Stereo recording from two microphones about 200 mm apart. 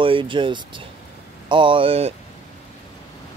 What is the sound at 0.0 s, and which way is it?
Speech, 25° right (ahead or behind).